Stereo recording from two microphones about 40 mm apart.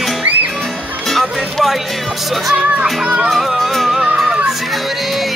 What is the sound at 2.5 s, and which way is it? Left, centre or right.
Speech, right.